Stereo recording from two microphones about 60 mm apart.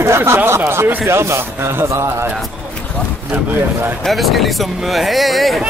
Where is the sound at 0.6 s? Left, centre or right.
Right.